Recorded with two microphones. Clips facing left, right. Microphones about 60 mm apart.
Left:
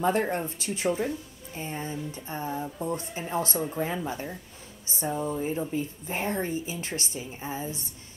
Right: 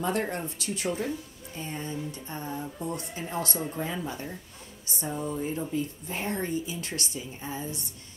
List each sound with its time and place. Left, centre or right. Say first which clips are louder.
0.0 s speech: left 4 dB; left
5.0 s speech: left 3 dB; centre
5.8 s speech: left 1 dB; left